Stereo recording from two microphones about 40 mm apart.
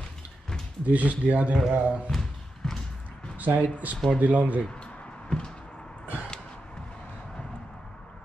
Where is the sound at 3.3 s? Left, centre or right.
Right.